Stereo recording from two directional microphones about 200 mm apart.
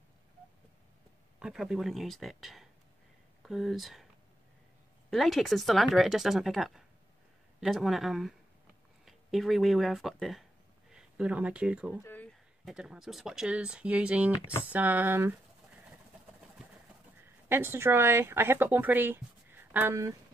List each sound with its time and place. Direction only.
1.4 s speech: centre (ahead or behind)
5.1 s speech: centre (ahead or behind)
12.0 s speech: 10° left (ahead or behind); by 15.3 s 10° right (ahead or behind)
17.5 s speech: 10° right (ahead or behind)